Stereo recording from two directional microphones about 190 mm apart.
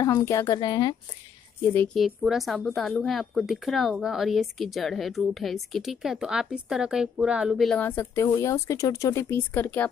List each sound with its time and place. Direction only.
0.0 s a woman's voice: 15° left (ahead or behind)
2.0 s speech: centre (ahead or behind)